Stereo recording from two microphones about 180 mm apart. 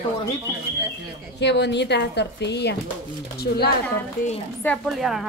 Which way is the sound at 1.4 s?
75° left (ahead or behind).